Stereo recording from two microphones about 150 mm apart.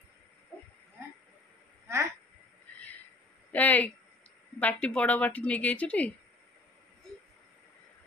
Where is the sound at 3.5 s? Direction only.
10° left (ahead or behind).